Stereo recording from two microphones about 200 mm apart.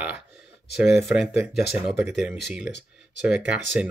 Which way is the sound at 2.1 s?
Centre (ahead or behind).